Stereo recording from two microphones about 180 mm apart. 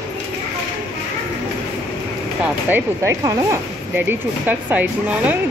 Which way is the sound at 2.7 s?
15° right (ahead or behind).